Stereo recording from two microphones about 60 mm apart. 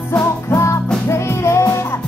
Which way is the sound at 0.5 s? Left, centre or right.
Left.